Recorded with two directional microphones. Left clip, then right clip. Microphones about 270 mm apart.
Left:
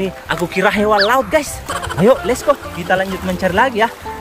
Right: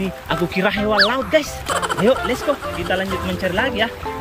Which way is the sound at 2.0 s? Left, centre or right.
Centre.